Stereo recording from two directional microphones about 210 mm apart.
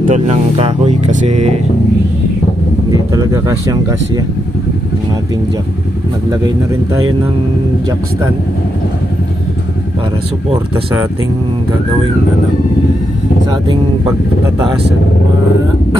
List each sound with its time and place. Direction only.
0.0 s speech: 30° right (ahead or behind)
2.9 s speech: 15° right (ahead or behind)
6.4 s speech: 15° right (ahead or behind)